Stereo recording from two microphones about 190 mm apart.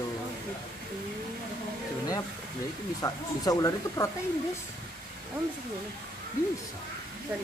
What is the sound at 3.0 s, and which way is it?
Speech, 20° left (ahead or behind).